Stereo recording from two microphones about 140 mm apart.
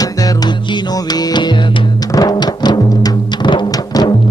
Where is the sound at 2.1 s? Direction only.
30° left (ahead or behind).